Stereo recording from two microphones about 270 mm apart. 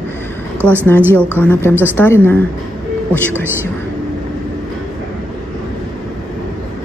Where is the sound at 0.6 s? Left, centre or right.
Centre.